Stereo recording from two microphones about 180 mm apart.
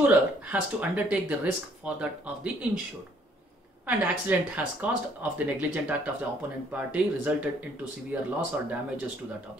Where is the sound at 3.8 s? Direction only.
10° right (ahead or behind).